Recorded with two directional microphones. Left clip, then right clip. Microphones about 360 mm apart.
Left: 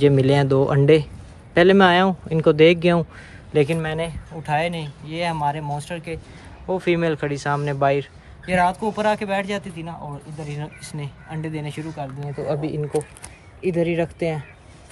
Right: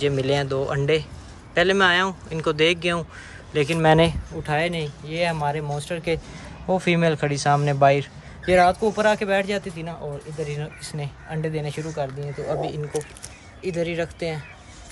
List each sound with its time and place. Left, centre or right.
0.0 s speech: centre
12.4 s speech: centre